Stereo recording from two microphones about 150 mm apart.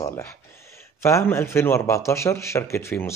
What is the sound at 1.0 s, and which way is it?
Speech, 20° left (ahead or behind).